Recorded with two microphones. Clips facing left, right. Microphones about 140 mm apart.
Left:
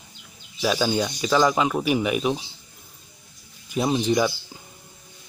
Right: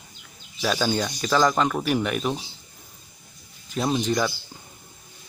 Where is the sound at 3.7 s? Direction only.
10° left (ahead or behind).